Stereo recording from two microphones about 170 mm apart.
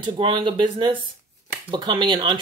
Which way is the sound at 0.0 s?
30° right (ahead or behind).